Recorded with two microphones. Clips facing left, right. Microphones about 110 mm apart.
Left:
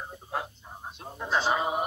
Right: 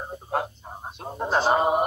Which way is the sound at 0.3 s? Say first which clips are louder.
Right 6 dB; 55° right (ahead or behind).